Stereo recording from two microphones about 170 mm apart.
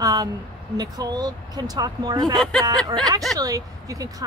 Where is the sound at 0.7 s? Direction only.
25° right (ahead or behind).